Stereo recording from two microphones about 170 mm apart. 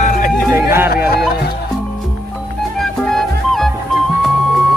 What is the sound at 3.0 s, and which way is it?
Music, centre (ahead or behind).